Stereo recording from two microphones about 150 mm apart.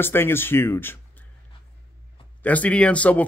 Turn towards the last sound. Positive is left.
turn(degrees=10)  # may be behind; listen again after turning